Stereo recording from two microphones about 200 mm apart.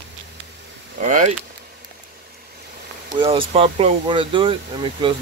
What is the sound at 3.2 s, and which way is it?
Speech, 25° right (ahead or behind).